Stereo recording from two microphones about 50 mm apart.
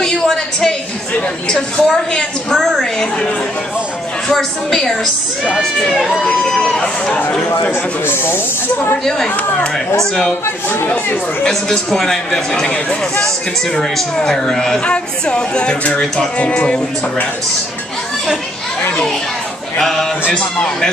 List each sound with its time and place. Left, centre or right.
0.0 s a sound: centre
1.5 s a woman's voice: centre
4.3 s a woman's voice: centre
8.1 s speech: left
9.9 s a woman's voice: centre
11.4 s a woman's voice: centre
13.7 s a woman's voice: centre
19.8 s a woman's voice: centre
20.3 s speech: centre